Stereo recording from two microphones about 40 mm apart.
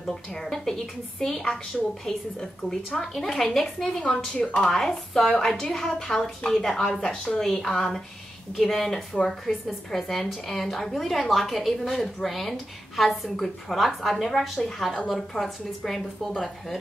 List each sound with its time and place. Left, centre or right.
0.0 s a woman's voice: centre
1.7 s a woman's voice: centre
3.8 s a woman's voice: centre
4.6 s a woman's voice: centre
7.0 s a woman's voice: left
7.3 s a woman's voice: centre